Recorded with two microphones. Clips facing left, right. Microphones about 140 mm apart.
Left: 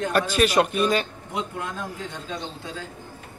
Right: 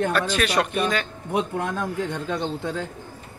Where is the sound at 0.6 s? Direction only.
20° left (ahead or behind).